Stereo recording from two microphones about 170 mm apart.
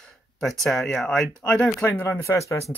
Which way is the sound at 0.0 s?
Centre (ahead or behind).